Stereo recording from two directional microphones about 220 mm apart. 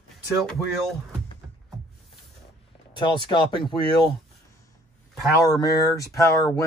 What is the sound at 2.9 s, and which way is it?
Speech, 20° left (ahead or behind).